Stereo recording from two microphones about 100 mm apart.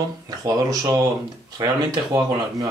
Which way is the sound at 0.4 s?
35° right (ahead or behind).